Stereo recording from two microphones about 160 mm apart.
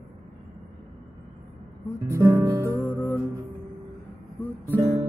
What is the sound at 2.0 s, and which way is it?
Guitar, 15° right (ahead or behind).